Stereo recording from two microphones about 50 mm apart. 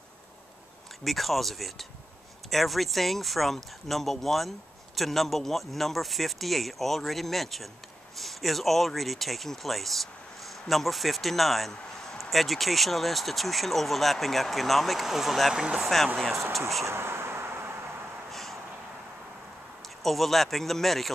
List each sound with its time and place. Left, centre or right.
1.0 s speech: centre
15.5 s speech: centre
16.8 s vehicle: right
18.3 s vehicle: centre
20.0 s speech: centre